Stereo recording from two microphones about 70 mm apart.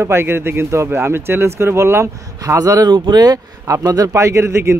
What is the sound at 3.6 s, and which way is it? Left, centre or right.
A man's voice, right.